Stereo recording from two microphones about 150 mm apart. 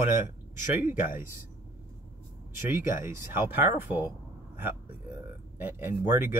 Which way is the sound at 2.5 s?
15° right (ahead or behind).